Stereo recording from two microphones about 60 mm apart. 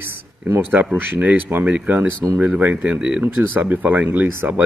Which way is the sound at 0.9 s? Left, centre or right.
Right.